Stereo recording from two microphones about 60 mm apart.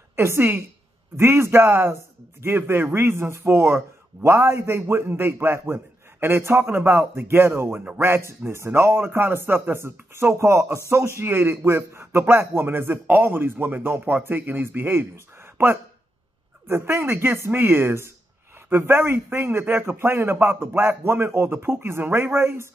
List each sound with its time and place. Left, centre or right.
0.1 s a woman's voice: right
15.5 s a sound: right
16.6 s a man's voice: right